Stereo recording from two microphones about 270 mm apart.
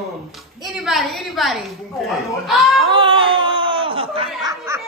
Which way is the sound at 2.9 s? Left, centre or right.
Centre.